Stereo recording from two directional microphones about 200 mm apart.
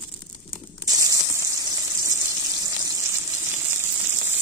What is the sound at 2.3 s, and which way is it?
Water, 15° right (ahead or behind).